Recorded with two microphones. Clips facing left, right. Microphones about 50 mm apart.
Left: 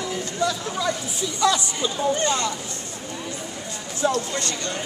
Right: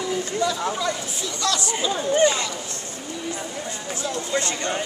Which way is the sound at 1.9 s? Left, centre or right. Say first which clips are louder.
Right 3 dB; centre.